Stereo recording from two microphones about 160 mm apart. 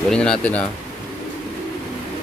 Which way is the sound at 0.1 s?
5° left (ahead or behind).